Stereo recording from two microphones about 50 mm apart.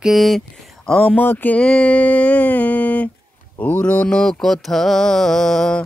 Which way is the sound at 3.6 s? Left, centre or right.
Left.